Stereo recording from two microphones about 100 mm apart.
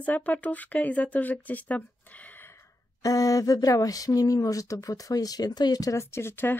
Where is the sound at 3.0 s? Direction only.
35° left (ahead or behind).